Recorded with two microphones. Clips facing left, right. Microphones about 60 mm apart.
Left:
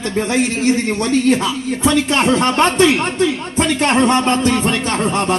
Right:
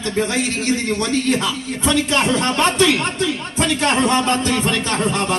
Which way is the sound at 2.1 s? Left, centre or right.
Left.